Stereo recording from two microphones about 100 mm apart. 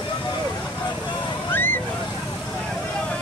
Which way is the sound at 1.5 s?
20° left (ahead or behind).